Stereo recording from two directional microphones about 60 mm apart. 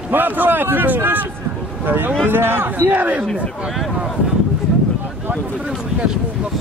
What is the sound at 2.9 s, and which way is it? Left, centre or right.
Speech, right.